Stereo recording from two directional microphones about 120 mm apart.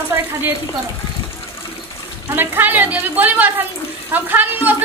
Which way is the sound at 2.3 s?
15° right (ahead or behind).